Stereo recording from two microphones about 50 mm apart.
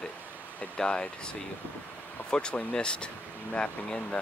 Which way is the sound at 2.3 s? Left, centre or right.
Centre.